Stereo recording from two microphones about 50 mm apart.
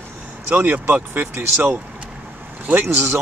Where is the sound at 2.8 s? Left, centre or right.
Right.